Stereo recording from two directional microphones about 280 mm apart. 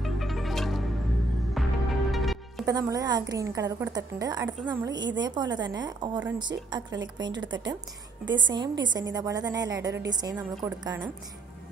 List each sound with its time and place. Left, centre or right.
0.0 s music: centre
2.6 s a woman's voice: centre